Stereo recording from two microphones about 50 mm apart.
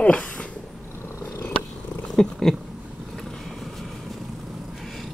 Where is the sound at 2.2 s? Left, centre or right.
Centre.